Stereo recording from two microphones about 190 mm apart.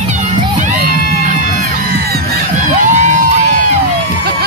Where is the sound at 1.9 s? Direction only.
55° right (ahead or behind).